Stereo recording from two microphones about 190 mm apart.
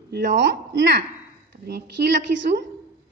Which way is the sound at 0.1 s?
65° right (ahead or behind).